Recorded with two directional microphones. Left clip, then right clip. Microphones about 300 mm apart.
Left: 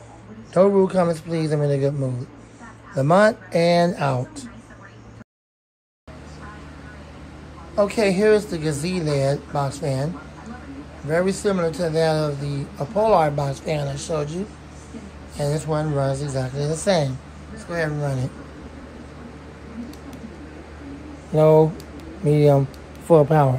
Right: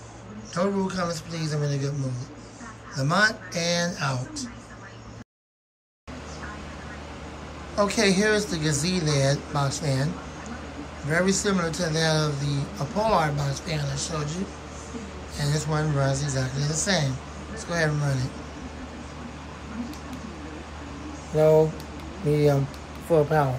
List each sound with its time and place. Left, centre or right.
0.6 s a man's voice: centre
7.7 s speech: centre
11.1 s speech: centre
22.3 s a man's voice: centre